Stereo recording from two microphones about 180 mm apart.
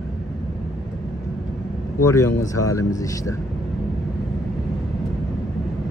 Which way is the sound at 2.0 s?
15° left (ahead or behind).